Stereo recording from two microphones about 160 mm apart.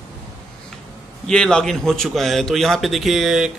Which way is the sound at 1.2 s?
5° left (ahead or behind).